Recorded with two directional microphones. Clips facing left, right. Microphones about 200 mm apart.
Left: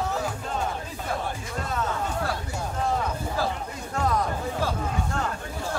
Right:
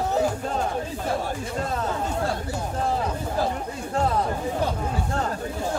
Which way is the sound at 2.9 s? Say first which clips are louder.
Right 2 dB; 20° right (ahead or behind).